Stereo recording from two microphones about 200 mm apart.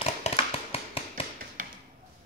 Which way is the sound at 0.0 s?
30° left (ahead or behind).